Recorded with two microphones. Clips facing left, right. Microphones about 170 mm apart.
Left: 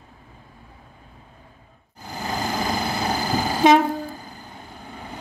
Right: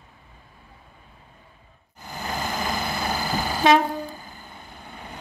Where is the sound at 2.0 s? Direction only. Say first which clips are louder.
Left 3 dB; 40° left (ahead or behind).